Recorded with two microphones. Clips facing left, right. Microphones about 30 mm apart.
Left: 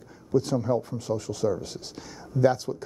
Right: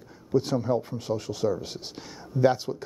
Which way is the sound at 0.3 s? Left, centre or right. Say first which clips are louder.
Even; centre.